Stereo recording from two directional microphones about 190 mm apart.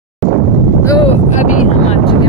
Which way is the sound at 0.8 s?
15° left (ahead or behind).